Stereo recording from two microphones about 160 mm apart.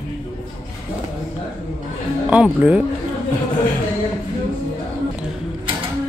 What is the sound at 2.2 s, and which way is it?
Speech, 5° right (ahead or behind).